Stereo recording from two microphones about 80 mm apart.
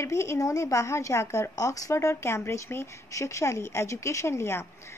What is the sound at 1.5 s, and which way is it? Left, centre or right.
Speech, left.